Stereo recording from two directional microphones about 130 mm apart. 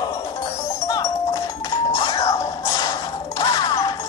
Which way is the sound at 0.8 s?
25° left (ahead or behind).